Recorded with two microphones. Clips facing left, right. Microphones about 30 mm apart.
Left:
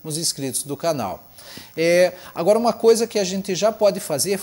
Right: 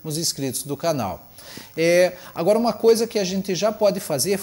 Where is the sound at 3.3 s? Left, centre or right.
Left.